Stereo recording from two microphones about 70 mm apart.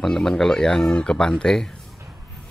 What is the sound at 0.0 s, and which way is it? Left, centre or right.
Speech, centre.